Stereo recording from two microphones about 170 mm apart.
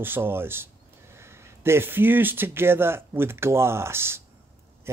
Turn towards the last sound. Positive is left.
turn(degrees=-15)  # may be behind; listen again after turning